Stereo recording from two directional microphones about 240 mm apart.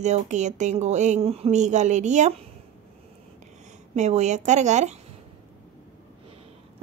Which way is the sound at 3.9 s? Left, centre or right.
Right.